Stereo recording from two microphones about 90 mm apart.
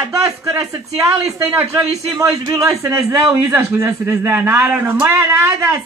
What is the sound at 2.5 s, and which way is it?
A man's voice, 40° right (ahead or behind).